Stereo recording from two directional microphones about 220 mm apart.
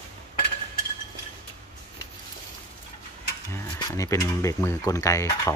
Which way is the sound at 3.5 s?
15° left (ahead or behind).